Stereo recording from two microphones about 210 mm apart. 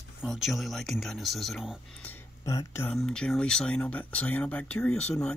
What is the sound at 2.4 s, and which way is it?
Speech, 15° left (ahead or behind).